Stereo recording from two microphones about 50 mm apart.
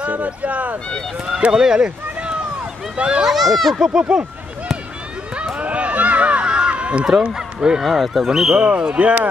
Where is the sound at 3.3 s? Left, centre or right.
Centre.